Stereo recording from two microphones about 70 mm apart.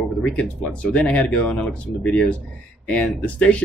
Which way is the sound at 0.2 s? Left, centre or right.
Centre.